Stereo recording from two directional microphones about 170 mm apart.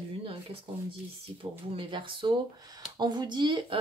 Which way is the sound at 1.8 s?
30° right (ahead or behind).